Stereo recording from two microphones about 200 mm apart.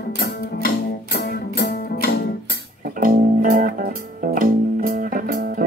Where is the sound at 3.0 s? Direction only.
45° right (ahead or behind).